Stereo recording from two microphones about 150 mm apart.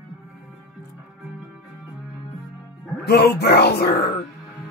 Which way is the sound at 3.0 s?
90° left.